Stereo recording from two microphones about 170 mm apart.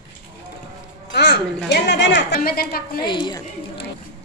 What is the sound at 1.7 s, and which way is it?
Speech, 90° left.